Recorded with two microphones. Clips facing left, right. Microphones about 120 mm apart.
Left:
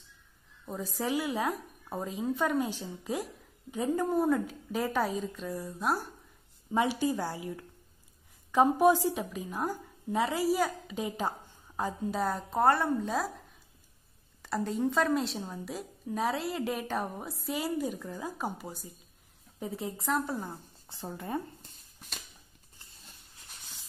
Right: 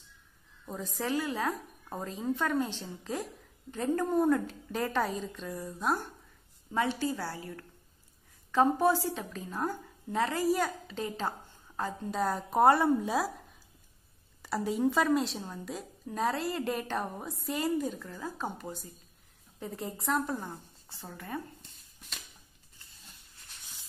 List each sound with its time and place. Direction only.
0.7 s a woman's voice: 5° left (ahead or behind)
6.7 s speech: 15° left (ahead or behind); by 12.4 s centre (ahead or behind)
12.4 s speech: 15° right (ahead or behind)
14.4 s a woman's voice: 5° right (ahead or behind)
17.9 s a woman's voice: 15° left (ahead or behind)
20.9 s a woman's voice: 20° left (ahead or behind)
21.6 s dog: 40° left (ahead or behind)